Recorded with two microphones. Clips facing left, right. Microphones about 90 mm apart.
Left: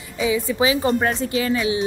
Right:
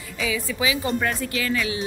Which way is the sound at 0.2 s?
30° left (ahead or behind).